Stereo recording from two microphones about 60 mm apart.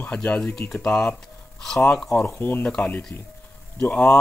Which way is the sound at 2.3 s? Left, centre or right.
Left.